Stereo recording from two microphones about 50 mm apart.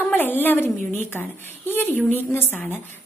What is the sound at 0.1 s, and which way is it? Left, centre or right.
A woman's voice, left.